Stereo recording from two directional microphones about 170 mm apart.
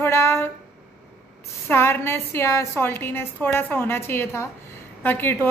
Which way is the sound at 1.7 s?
15° left (ahead or behind).